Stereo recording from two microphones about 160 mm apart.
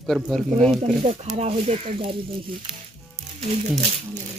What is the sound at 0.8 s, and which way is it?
Speech, 40° right (ahead or behind).